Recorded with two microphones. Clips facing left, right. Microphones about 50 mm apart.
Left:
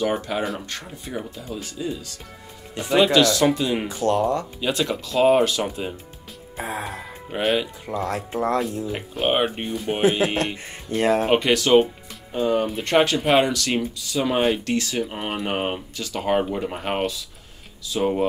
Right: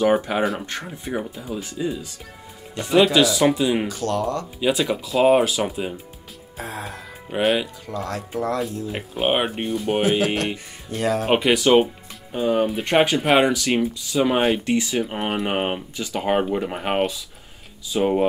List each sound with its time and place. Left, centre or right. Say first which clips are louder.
0.0 s speech: right 5 dB; right
1.3 s speech: right 2 dB; centre
2.7 s speech: right 1 dB; centre
3.0 s speech: right 1 dB; centre
3.8 s speech: left 2 dB; left
4.6 s speech: right 3 dB; centre
6.5 s music: left 3 dB; centre
7.2 s speech: right 2 dB; centre
8.1 s speech: left 1 dB; left
8.8 s speech: right 1 dB; centre
10.0 s speech: left 4 dB; left
11.2 s speech: right 1 dB; centre